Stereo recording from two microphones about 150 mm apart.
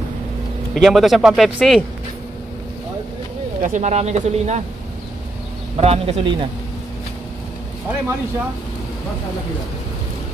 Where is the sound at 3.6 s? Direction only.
55° right (ahead or behind).